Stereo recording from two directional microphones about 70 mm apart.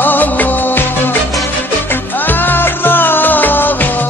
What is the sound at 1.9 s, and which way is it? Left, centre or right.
Music, left.